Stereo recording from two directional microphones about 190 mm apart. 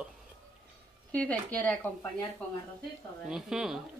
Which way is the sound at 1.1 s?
5° left (ahead or behind).